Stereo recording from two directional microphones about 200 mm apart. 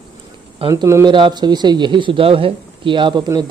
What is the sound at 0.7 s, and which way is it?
Speech, 15° right (ahead or behind).